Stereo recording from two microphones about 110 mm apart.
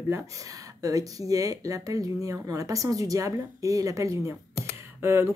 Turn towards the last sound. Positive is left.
turn(degrees=-25)  # may be behind; listen again after turning